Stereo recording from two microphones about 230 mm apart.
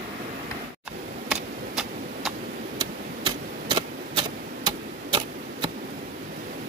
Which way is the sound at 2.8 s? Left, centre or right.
Centre.